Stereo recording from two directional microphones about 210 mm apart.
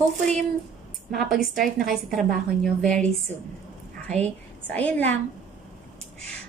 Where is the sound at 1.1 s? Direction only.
Centre (ahead or behind).